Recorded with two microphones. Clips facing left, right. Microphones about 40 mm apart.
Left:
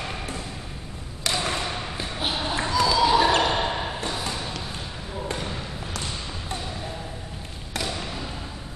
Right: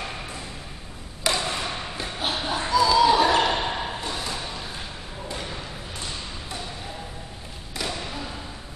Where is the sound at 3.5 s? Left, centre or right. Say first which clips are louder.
Left 1 dB; centre.